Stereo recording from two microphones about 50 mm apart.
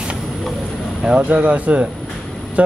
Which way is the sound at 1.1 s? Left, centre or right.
Right.